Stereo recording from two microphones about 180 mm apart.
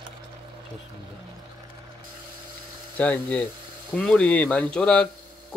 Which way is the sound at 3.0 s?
10° left (ahead or behind).